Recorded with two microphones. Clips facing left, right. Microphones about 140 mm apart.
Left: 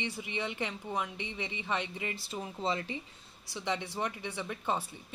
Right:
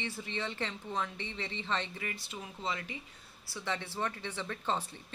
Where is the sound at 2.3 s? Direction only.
30° left (ahead or behind).